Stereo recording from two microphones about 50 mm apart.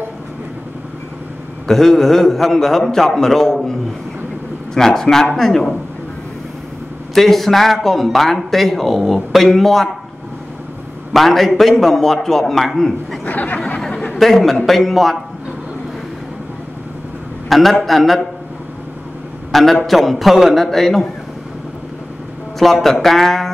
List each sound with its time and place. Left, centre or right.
1.7 s a man's voice: centre
4.7 s a man's voice: centre
7.2 s a man's voice: centre
11.1 s a man's voice: centre
13.2 s speech: left
13.7 s a sound: centre
14.1 s a man's voice: centre
17.5 s a man's voice: centre
19.5 s a man's voice: centre
22.6 s a man's voice: centre